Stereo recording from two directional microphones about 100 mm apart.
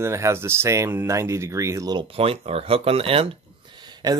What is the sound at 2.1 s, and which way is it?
Speech, 75° right (ahead or behind).